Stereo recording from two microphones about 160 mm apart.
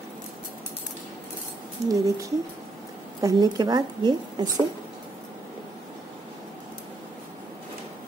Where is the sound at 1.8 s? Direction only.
20° right (ahead or behind).